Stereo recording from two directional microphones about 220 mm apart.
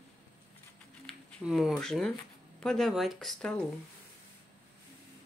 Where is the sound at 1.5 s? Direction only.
Centre (ahead or behind).